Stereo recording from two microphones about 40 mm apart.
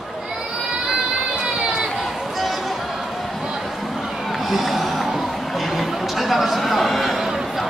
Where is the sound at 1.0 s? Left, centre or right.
Centre.